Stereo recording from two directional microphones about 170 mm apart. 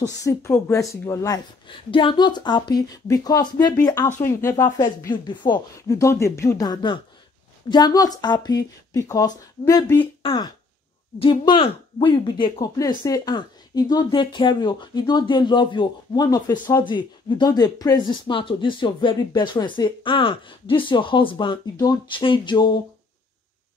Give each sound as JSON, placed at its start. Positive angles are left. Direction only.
{"t": 0.2, "sound": "a woman's voice", "side_deg": 15}
{"t": 1.7, "sound": "speech", "side_deg": 30}
{"t": 10.2, "sound": "speech", "side_deg": 30}